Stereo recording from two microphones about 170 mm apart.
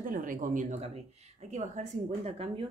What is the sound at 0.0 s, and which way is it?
Speech, 50° right (ahead or behind).